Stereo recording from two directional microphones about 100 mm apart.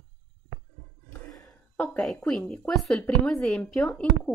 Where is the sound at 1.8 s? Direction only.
15° left (ahead or behind).